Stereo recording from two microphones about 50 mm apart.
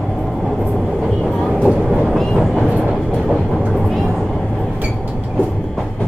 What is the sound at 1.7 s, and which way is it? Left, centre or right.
Vehicle, centre.